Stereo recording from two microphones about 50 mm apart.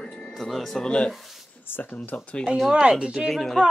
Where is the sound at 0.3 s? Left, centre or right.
Centre.